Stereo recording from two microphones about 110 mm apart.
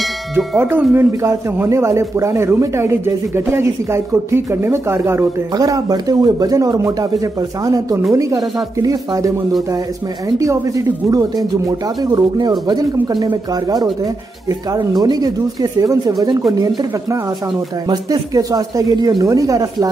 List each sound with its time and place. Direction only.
0.6 s speech: 20° right (ahead or behind)
10.4 s speech: 30° right (ahead or behind)